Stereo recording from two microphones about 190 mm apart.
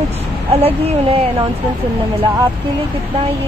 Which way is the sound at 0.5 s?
30° right (ahead or behind).